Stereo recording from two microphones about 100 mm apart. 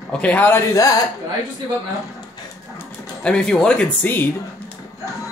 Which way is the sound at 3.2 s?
10° left (ahead or behind).